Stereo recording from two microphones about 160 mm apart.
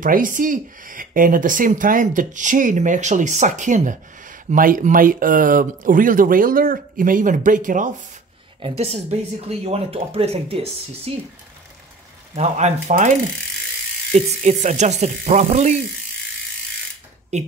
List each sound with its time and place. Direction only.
0.0 s speech: 55° right (ahead or behind)
8.5 s speech: 35° right (ahead or behind)
12.4 s speech: 45° right (ahead or behind)
12.8 s speech: 55° right (ahead or behind)
14.1 s speech: 45° right (ahead or behind)
17.3 s speech: 45° right (ahead or behind)